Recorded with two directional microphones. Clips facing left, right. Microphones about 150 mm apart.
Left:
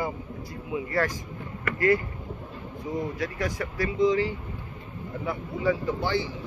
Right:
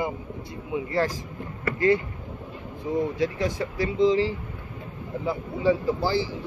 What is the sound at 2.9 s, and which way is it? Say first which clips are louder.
Speech: right 5 dB; 25° right (ahead or behind).